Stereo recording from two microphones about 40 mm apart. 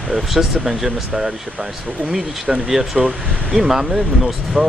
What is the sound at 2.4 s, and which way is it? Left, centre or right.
Speech, right.